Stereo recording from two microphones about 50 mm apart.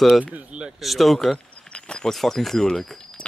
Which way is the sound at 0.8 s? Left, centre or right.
Centre.